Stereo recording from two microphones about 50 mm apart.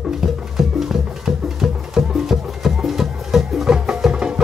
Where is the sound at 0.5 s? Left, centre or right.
Centre.